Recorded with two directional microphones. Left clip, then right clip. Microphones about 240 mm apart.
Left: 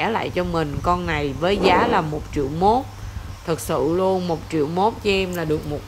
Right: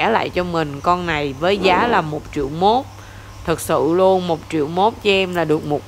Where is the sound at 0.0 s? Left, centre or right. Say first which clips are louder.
Right 5 dB; centre.